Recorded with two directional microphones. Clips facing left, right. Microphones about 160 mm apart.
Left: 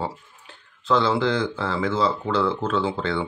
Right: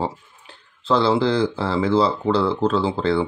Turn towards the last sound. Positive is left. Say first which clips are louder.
# right 4 dB
turn(degrees=-35)  # may be behind; listen again after turning